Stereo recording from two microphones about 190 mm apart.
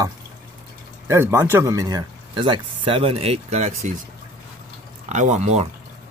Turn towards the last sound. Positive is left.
turn(degrees=-35)  # may be behind; listen again after turning